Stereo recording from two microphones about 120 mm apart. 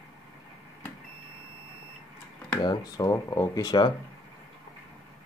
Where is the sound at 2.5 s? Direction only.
35° left (ahead or behind).